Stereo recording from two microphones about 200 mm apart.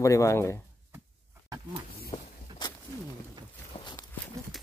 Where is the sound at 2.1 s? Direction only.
30° left (ahead or behind).